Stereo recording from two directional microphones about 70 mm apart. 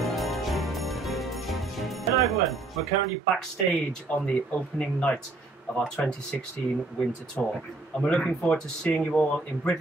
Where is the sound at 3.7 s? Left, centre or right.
Left.